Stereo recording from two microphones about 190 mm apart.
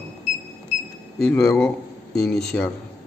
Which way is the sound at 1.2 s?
5° left (ahead or behind).